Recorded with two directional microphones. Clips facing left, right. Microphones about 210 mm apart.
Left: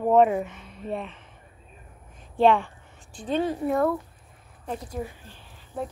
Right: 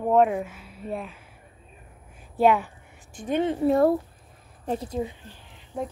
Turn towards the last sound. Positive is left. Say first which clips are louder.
# right 1 dB
turn(degrees=-15)  # may be behind; listen again after turning